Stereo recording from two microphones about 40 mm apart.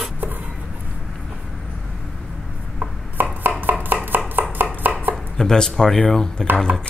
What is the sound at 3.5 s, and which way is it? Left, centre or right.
Chopping, right.